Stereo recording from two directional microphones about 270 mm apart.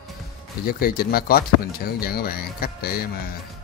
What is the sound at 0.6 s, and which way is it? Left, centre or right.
Speech, left.